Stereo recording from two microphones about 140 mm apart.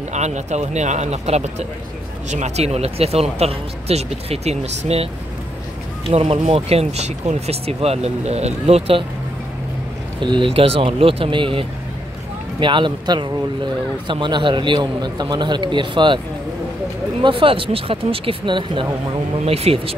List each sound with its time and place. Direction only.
0.1 s speech: 55° right (ahead or behind)
10.2 s a man's voice: 35° right (ahead or behind)
17.2 s a man's voice: 40° right (ahead or behind)
19.4 s speech: 45° right (ahead or behind)